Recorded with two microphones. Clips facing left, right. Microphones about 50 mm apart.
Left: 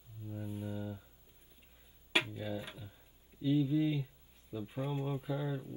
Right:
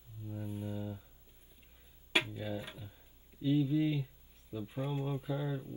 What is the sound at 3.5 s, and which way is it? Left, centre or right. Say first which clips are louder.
Speech: even; centre.